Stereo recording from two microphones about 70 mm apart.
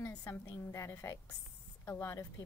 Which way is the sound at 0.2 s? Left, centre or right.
Left.